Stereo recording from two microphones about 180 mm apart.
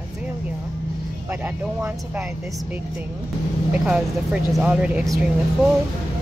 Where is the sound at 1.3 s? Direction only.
5° right (ahead or behind).